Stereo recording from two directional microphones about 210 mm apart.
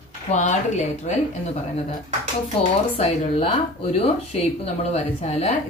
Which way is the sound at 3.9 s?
30° left (ahead or behind).